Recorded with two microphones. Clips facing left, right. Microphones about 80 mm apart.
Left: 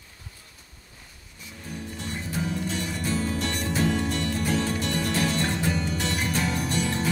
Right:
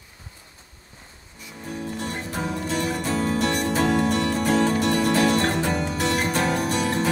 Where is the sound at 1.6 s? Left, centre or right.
Right.